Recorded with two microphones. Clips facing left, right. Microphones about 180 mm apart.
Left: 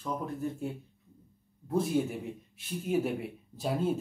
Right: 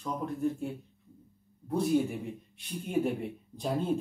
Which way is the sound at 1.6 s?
Centre (ahead or behind).